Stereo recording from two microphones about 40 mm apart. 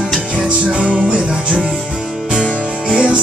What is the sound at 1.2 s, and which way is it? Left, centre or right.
Music, centre.